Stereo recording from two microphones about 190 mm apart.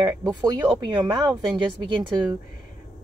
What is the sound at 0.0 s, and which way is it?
Speech, 20° right (ahead or behind).